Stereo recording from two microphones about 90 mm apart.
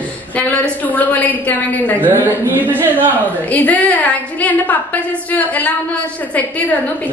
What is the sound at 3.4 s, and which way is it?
A woman's voice, 15° left (ahead or behind).